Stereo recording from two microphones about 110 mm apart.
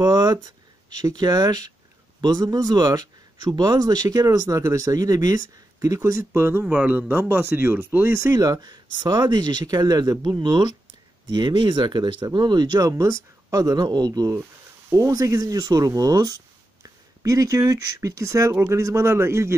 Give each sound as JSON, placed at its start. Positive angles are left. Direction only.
{"t": 0.0, "sound": "speech", "side_deg": -35}